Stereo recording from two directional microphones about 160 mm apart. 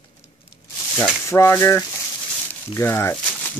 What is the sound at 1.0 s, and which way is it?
Speech, 15° left (ahead or behind).